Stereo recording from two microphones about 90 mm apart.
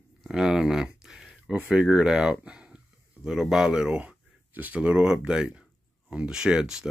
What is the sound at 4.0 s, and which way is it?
Speech, 20° right (ahead or behind).